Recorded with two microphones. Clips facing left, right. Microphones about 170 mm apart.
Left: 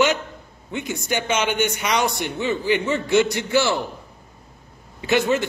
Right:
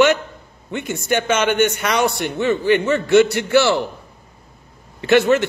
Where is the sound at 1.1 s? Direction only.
15° left (ahead or behind).